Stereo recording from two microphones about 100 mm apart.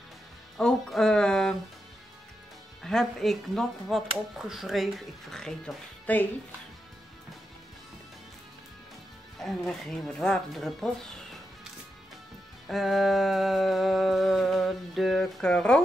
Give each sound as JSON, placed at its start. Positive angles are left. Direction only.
{"t": 0.6, "sound": "speech", "side_deg": 5}
{"t": 2.8, "sound": "music", "side_deg": 5}
{"t": 6.1, "sound": "speech", "side_deg": 15}
{"t": 9.4, "sound": "music", "side_deg": 5}
{"t": 12.6, "sound": "music", "side_deg": 0}